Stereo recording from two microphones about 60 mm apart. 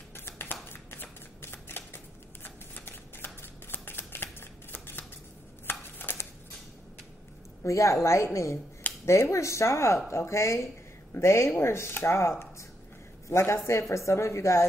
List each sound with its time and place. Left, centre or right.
0.1 s finger snapping: left
1.4 s shuffling cards: left
5.7 s a sound: left
7.6 s a woman's voice: left
8.8 s finger snapping: left
9.3 s speech: left